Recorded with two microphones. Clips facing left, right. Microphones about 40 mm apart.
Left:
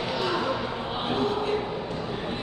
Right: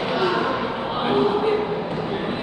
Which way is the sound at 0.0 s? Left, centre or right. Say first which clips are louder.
Right 6 dB; right.